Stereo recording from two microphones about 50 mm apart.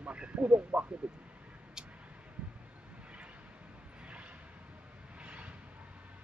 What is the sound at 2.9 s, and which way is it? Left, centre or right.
Vehicle, right.